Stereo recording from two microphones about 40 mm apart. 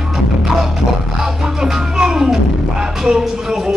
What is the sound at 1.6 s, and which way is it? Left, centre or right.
Music, centre.